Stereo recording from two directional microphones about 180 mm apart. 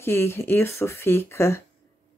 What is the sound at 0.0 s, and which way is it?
Speech, 15° left (ahead or behind).